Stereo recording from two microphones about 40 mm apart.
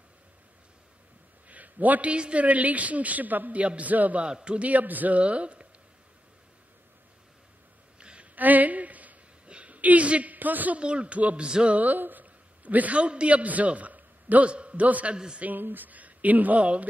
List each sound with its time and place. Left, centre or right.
1.5 s a sound: right
2.1 s a woman's voice: right
4.2 s speech: right
4.6 s a woman's voice: right
8.0 s a sound: right
8.4 s a sound: right
9.5 s a man's voice: right
10.8 s speech: right
11.4 s speech: centre
11.7 s a man's voice: right
14.4 s a woman's voice: right
15.1 s speech: centre
15.4 s speech: right